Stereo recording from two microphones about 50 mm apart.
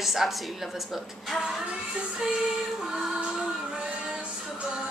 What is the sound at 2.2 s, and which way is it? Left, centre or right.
Music, centre.